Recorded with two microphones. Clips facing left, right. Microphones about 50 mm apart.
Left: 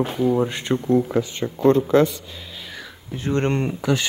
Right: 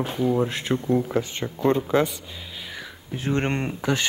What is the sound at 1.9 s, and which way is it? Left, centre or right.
Speech, right.